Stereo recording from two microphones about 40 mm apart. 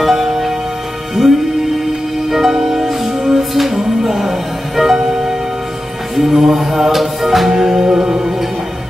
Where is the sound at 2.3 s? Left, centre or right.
Centre.